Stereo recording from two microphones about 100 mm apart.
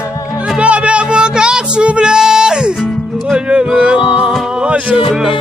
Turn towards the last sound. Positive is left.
turn(degrees=-5)  # may be behind; listen again after turning